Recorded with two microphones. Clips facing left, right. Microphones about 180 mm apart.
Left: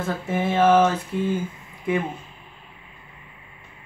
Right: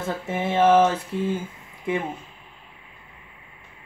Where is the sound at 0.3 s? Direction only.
25° right (ahead or behind).